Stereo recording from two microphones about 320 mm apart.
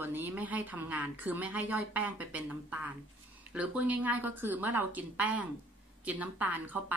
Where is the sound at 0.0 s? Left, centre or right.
Centre.